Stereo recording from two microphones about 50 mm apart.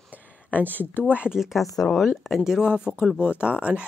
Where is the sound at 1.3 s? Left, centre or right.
Centre.